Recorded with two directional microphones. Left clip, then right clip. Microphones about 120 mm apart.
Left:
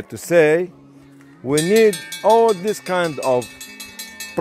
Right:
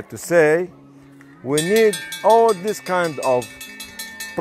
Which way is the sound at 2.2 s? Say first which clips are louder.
Even; 75° left (ahead or behind).